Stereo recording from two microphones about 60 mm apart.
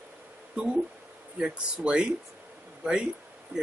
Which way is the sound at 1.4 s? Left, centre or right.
Centre.